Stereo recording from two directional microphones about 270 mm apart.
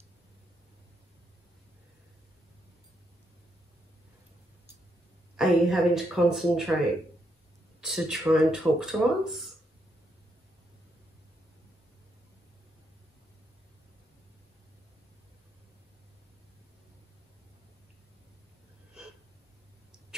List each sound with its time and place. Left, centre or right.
5.3 s speech: centre
7.8 s speech: centre